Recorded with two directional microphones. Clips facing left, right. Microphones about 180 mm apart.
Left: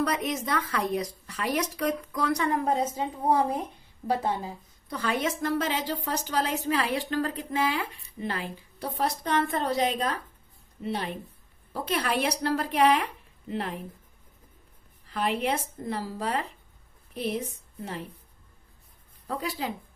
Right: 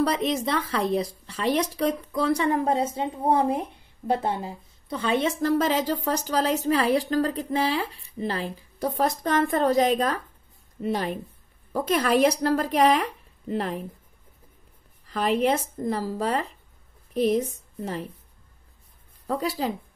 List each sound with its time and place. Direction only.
0.0 s speech: 30° right (ahead or behind)
4.8 s a woman's voice: 25° right (ahead or behind); by 13.8 s 40° right (ahead or behind)
15.0 s a woman's voice: 40° right (ahead or behind)
19.2 s a woman's voice: 40° right (ahead or behind)